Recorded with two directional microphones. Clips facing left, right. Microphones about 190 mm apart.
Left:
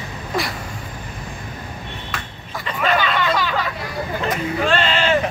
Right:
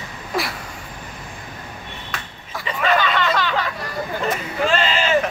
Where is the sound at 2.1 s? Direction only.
Centre (ahead or behind).